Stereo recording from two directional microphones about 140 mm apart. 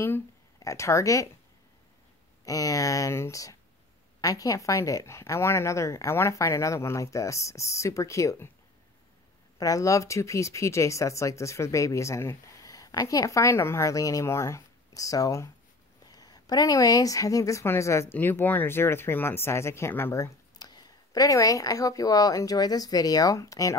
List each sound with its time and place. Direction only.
0.0 s speech: 20° left (ahead or behind)
2.4 s speech: 25° left (ahead or behind)
9.6 s speech: 25° left (ahead or behind)
20.5 s speech: 30° left (ahead or behind)